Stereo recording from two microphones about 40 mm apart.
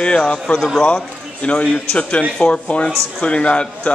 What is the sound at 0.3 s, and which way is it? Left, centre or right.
A man's voice, left.